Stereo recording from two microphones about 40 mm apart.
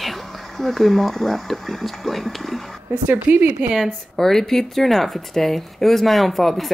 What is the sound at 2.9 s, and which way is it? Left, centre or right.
Speech, right.